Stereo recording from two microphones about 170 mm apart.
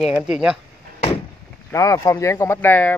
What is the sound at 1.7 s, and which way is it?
Speech, 20° left (ahead or behind).